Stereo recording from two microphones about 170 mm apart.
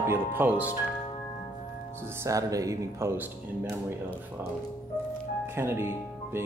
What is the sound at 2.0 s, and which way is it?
Speech, 15° right (ahead or behind).